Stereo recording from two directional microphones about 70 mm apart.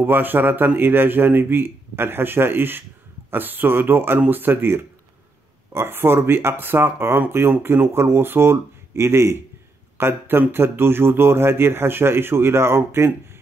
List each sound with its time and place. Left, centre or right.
0.0 s speech: right